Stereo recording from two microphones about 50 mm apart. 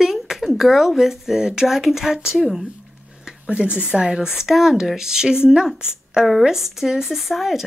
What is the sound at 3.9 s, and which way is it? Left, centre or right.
Speech, centre.